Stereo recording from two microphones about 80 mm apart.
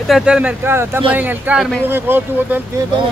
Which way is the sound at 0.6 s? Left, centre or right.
Right.